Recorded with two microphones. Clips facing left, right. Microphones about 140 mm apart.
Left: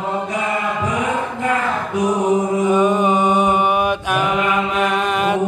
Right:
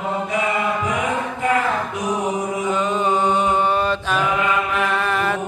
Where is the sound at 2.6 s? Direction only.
15° left (ahead or behind).